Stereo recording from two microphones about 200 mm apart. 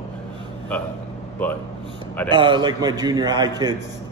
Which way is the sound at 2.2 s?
25° right (ahead or behind).